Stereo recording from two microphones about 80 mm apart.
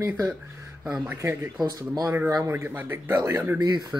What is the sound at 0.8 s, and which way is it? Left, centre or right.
Speech, centre.